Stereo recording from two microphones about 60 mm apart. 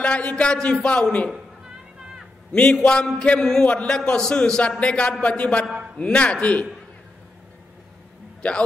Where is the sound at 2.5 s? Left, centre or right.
Centre.